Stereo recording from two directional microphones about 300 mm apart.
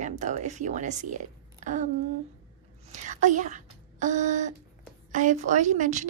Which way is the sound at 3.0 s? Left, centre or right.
Right.